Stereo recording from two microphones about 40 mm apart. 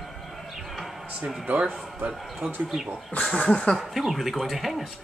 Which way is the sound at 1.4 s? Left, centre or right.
Right.